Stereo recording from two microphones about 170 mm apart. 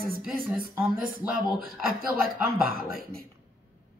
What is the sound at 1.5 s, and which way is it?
Speech, 60° right (ahead or behind).